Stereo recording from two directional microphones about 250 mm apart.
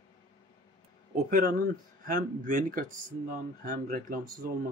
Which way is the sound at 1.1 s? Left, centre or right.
Right.